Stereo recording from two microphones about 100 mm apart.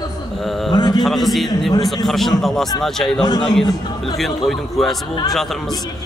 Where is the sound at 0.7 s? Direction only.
45° left (ahead or behind).